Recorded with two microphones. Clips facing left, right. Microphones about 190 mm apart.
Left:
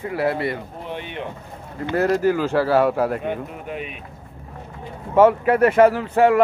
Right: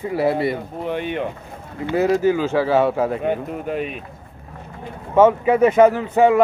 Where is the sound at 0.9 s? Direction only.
55° right (ahead or behind).